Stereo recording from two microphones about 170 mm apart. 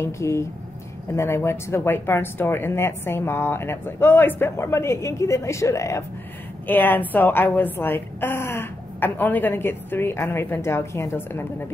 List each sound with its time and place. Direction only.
0.0 s a woman's voice: 15° left (ahead or behind)